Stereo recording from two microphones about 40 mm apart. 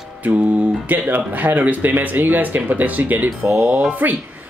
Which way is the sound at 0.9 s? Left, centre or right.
Right.